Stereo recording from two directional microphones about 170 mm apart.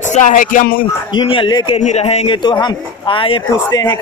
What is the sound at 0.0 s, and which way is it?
Music, 45° left (ahead or behind).